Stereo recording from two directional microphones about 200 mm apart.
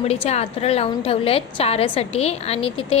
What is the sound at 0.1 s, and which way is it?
A woman's voice, 30° left (ahead or behind).